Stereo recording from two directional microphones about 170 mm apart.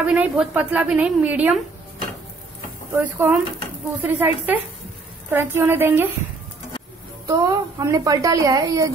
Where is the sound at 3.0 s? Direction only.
10° right (ahead or behind).